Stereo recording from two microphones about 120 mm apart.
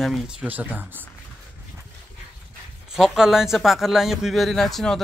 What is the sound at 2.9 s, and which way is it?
A man's voice, 5° right (ahead or behind).